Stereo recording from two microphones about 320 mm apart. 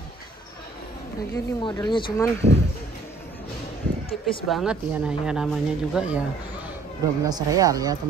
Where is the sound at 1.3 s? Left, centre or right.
Centre.